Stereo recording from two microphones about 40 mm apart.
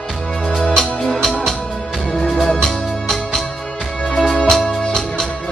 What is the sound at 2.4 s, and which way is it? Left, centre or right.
Music, centre.